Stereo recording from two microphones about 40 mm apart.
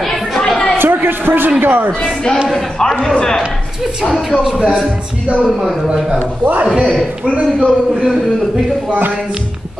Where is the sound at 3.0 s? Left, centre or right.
Centre.